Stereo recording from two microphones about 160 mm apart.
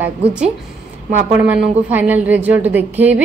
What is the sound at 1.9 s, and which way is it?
Speech, 10° right (ahead or behind).